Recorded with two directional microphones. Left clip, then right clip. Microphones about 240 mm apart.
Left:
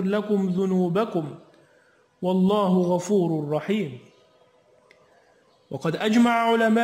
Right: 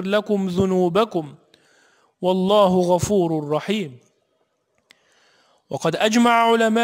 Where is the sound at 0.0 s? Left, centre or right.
Right.